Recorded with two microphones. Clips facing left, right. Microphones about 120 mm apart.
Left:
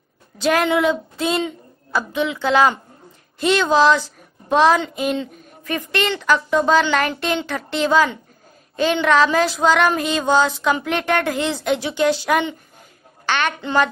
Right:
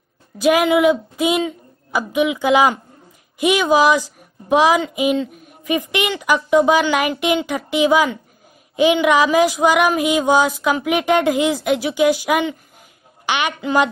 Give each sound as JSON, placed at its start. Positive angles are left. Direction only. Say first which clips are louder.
{"t": 0.4, "sound": "a woman's voice", "louder": "right 3 dB", "side_deg": -10}